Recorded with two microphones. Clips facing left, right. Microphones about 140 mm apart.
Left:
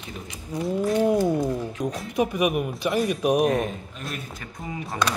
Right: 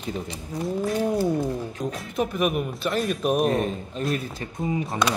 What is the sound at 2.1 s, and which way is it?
Speech, 15° left (ahead or behind).